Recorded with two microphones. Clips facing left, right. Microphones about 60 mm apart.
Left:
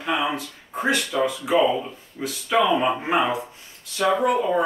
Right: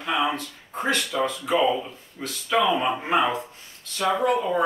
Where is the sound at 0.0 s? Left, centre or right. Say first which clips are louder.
Even; centre.